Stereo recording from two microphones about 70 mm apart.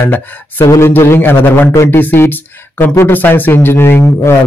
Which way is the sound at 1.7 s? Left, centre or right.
Left.